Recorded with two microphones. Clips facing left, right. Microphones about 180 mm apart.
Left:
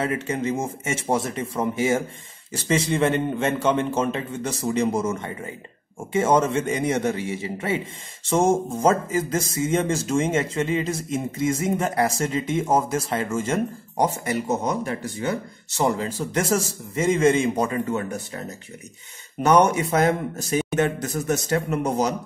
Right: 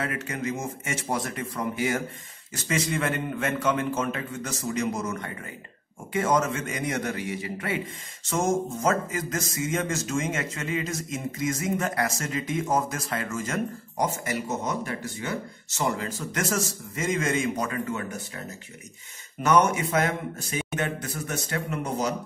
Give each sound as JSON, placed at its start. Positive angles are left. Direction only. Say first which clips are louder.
{"t": 0.0, "sound": "a man's voice", "louder": "left 6 dB", "side_deg": 25}
{"t": 19.4, "sound": "a man's voice", "louder": "left 4 dB", "side_deg": 35}